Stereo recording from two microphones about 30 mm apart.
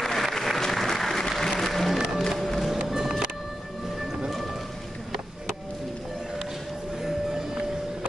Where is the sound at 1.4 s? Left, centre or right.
Centre.